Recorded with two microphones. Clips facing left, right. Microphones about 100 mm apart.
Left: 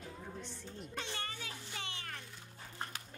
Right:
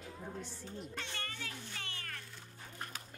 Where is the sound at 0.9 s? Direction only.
15° left (ahead or behind).